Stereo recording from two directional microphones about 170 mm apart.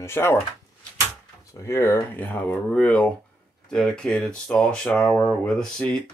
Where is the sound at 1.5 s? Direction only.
15° left (ahead or behind).